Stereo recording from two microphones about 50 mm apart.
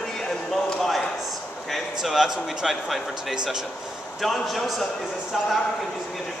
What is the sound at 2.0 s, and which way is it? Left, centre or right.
A man's voice, centre.